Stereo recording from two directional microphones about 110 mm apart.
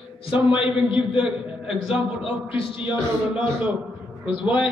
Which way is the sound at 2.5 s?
55° left (ahead or behind).